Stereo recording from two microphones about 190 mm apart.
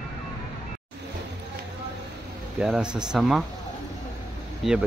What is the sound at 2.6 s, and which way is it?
Speech, 5° right (ahead or behind).